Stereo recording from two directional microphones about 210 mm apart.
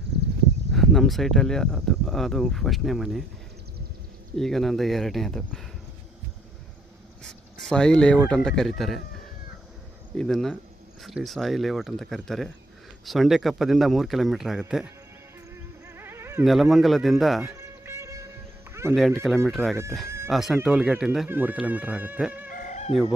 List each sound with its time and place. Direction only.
0.7 s speech: centre (ahead or behind)
4.4 s speech: centre (ahead or behind)
7.6 s speech: 5° left (ahead or behind)
10.1 s speech: centre (ahead or behind)
15.5 s a sound: 10° right (ahead or behind)
16.4 s speech: centre (ahead or behind)
17.6 s music: 15° right (ahead or behind)
18.7 s a sound: 10° right (ahead or behind)
18.9 s speech: centre (ahead or behind)
22.5 s chicken: 35° left (ahead or behind)